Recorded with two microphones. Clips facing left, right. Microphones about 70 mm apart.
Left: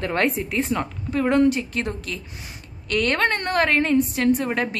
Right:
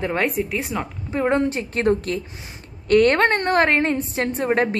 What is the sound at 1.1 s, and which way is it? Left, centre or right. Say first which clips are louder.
A woman's voice: left 2 dB; right.